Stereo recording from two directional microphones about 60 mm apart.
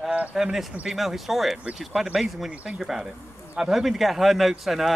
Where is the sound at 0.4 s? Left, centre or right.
Centre.